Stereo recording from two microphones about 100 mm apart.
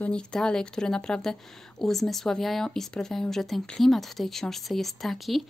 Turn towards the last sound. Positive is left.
turn(degrees=0)  # may be behind; listen again after turning